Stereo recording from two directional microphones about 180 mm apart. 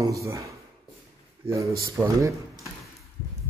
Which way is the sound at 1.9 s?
15° right (ahead or behind).